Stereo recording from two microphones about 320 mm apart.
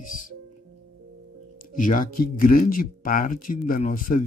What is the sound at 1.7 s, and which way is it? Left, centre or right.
Speech, left.